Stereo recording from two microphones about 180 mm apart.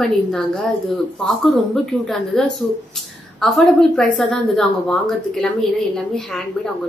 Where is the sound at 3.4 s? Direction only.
Centre (ahead or behind).